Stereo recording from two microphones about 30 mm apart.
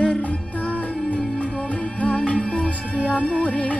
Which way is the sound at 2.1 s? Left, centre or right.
Left.